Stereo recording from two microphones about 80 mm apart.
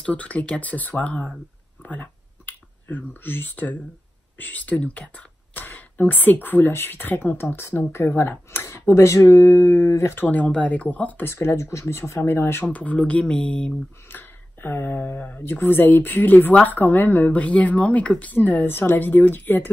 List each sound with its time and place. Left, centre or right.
0.0 s speech: centre
1.8 s a sound: left
4.4 s speech: left
10.2 s speech: centre
11.2 s speech: left
12.6 s speech: centre
14.0 s speech: left